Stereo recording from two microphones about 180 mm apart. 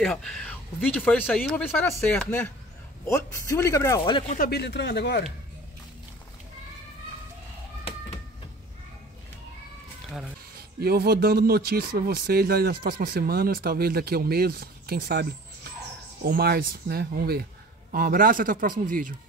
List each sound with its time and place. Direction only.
0.0 s speech: centre (ahead or behind); by 4.2 s 25° left (ahead or behind)
4.5 s speech: 70° left (ahead or behind)
10.8 s speech: 60° right (ahead or behind)
16.3 s a man's voice: 60° right (ahead or behind)